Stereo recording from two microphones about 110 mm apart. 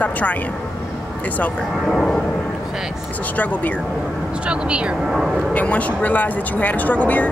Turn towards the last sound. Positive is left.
turn(degrees=15)  # may be behind; listen again after turning